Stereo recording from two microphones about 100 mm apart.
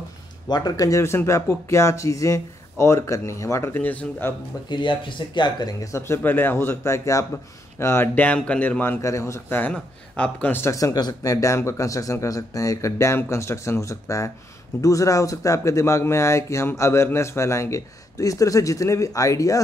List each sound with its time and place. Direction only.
0.5 s speech: 40° left (ahead or behind); by 4.3 s 15° left (ahead or behind)
4.6 s speech: 50° left (ahead or behind); by 9.0 s 15° left (ahead or behind)
9.0 s speech: 30° left (ahead or behind)
10.7 s speech: 35° left (ahead or behind)